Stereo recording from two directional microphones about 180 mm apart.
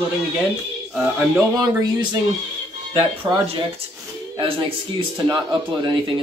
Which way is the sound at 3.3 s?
25° right (ahead or behind).